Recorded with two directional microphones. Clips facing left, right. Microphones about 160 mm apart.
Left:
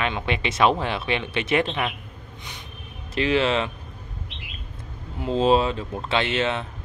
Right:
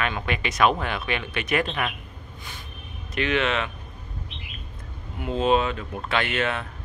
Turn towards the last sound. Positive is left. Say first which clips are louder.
# left 2 dB
turn(degrees=25)  # may be behind; listen again after turning